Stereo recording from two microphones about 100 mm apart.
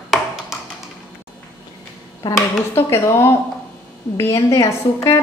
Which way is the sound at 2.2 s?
40° left (ahead or behind).